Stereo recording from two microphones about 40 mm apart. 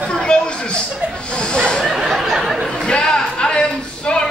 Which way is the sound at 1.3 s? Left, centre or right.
Left.